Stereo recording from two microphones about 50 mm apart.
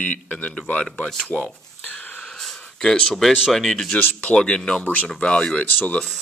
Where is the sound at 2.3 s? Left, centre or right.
Centre.